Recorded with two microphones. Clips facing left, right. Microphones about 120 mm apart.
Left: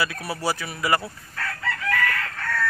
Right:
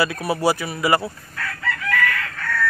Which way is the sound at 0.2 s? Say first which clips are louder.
Right 7 dB; 15° right (ahead or behind).